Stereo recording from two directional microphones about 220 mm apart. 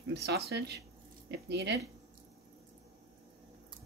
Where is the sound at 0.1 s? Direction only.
45° right (ahead or behind).